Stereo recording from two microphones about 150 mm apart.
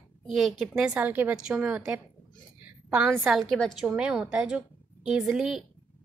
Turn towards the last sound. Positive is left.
turn(degrees=0)  # may be behind; listen again after turning